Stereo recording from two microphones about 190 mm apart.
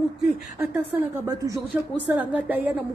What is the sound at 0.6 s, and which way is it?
Speech, 10° right (ahead or behind).